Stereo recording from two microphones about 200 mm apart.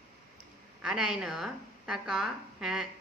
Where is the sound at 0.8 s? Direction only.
5° right (ahead or behind).